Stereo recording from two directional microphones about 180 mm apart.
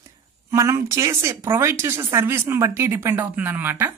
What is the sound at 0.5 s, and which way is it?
Speech, 15° right (ahead or behind).